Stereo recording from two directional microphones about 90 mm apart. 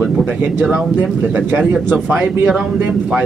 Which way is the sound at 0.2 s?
20° right (ahead or behind).